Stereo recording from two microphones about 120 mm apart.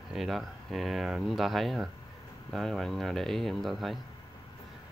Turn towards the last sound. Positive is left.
turn(degrees=0)  # may be behind; listen again after turning